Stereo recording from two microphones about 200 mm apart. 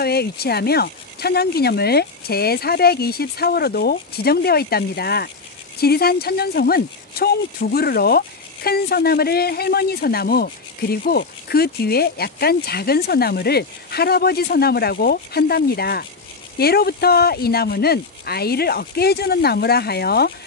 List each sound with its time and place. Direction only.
0.0 s a man's voice: 50° left (ahead or behind)